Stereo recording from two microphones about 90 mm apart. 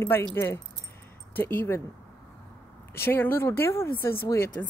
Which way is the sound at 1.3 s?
20° left (ahead or behind).